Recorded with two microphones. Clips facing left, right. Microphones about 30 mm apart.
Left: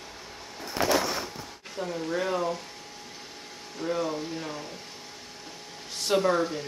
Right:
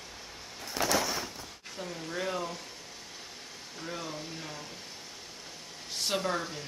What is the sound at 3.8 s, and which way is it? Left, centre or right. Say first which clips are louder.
Speech: left 10 dB; centre.